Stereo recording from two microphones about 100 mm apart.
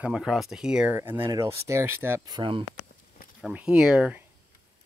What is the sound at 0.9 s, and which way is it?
Speech, 20° right (ahead or behind).